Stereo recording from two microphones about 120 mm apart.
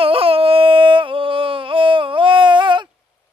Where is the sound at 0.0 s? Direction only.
50° right (ahead or behind).